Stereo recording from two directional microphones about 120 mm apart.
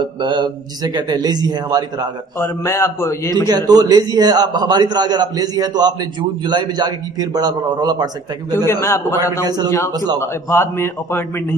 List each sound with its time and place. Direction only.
0.0 s a man's voice: 40° right (ahead or behind)
2.3 s a man's voice: 20° left (ahead or behind)
3.4 s a man's voice: 35° right (ahead or behind)
8.8 s a man's voice: 20° left (ahead or behind)
9.4 s a man's voice: 35° right (ahead or behind)
10.1 s a man's voice: 20° left (ahead or behind)